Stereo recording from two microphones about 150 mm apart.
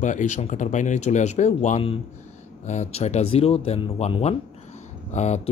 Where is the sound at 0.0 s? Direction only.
55° left (ahead or behind).